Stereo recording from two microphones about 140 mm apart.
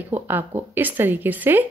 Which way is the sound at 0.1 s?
15° right (ahead or behind).